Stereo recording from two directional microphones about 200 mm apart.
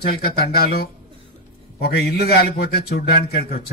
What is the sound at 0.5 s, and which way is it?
A man's voice, 50° left (ahead or behind).